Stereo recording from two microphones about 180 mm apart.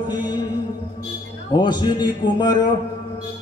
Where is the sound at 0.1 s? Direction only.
25° left (ahead or behind).